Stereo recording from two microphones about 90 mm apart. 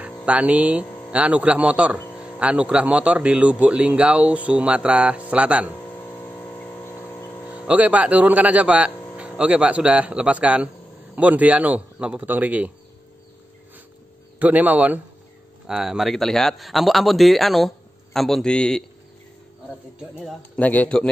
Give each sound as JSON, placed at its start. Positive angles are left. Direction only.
{"t": 0.0, "sound": "a man's voice", "side_deg": -15}
{"t": 6.0, "sound": "a sound", "side_deg": 25}
{"t": 6.9, "sound": "a sound", "side_deg": 35}
{"t": 7.5, "sound": "a man's voice", "side_deg": -15}
{"t": 14.4, "sound": "a man's voice", "side_deg": -20}
{"t": 15.6, "sound": "speech", "side_deg": -5}
{"t": 20.5, "sound": "a man's voice", "side_deg": 15}